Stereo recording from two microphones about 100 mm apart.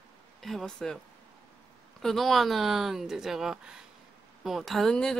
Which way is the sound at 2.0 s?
Centre (ahead or behind).